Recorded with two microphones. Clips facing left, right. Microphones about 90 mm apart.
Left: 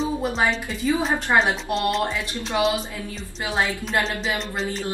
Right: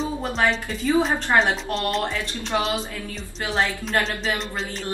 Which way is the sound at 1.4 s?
Centre (ahead or behind).